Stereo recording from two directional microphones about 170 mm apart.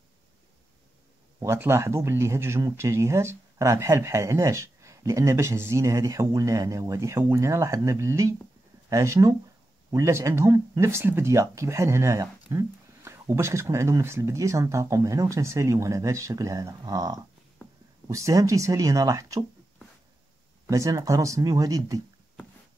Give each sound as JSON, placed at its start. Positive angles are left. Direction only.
{"t": 1.4, "sound": "speech", "side_deg": -15}
{"t": 20.6, "sound": "speech", "side_deg": -20}